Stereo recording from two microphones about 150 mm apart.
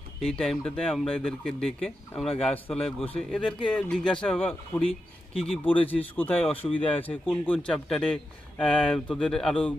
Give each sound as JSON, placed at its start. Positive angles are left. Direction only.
{"t": 0.2, "sound": "a man's voice", "side_deg": 5}